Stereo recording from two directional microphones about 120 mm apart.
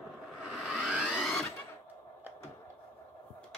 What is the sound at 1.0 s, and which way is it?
Sewing machine, 5° left (ahead or behind).